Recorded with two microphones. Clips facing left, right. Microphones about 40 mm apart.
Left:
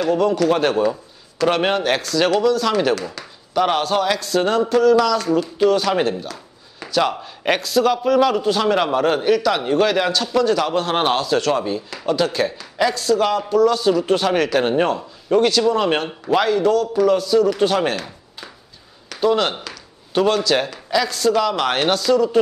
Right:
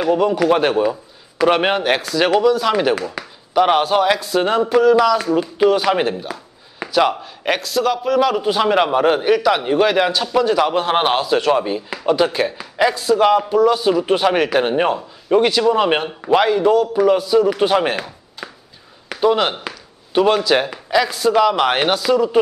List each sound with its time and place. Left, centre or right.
0.0 s speech: centre
6.8 s a sound: centre
7.2 s a man's voice: centre
8.4 s speech: centre
19.1 s speech: centre